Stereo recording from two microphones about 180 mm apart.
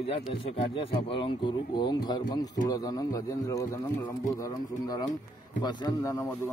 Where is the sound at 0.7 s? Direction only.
30° left (ahead or behind).